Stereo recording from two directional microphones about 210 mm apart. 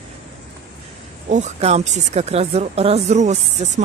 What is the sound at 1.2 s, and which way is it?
Speech, 35° right (ahead or behind).